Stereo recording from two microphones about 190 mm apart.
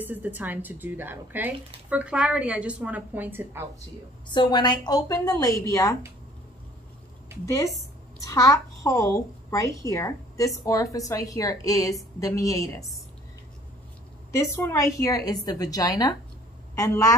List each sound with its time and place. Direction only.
0.0 s speech: 10° right (ahead or behind)
4.3 s a woman's voice: 25° left (ahead or behind)
8.3 s a woman's voice: 15° left (ahead or behind)
14.5 s a woman's voice: 15° left (ahead or behind)